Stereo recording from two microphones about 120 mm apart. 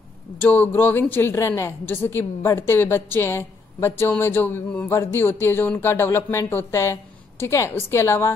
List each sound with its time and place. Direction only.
0.4 s speech: 15° left (ahead or behind)